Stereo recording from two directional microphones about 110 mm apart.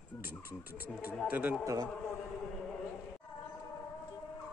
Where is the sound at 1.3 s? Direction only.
15° right (ahead or behind).